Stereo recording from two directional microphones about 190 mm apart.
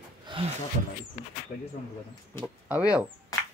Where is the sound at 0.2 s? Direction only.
25° right (ahead or behind).